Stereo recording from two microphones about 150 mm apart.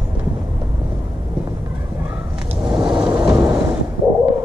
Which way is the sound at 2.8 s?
25° right (ahead or behind).